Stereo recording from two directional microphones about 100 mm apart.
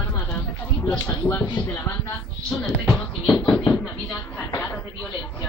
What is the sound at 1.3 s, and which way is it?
Speech, 25° left (ahead or behind).